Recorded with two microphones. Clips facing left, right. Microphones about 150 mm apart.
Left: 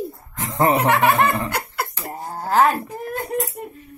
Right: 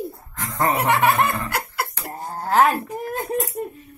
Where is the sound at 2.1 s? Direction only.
10° left (ahead or behind).